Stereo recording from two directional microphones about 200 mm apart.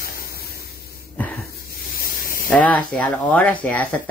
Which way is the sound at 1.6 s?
45° left (ahead or behind).